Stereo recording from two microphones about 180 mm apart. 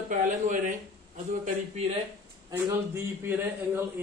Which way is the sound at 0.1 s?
45° right (ahead or behind).